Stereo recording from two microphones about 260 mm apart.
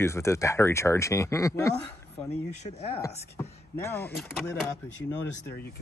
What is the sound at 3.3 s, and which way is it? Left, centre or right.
Speech, centre.